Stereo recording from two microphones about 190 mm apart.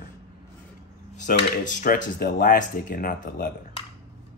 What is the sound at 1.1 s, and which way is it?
Speech, 40° left (ahead or behind).